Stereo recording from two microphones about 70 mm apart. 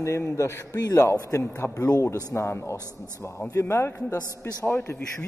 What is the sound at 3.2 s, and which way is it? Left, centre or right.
Speech, left.